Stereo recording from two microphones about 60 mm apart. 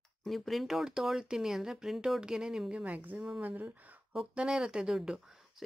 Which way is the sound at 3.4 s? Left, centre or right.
Right.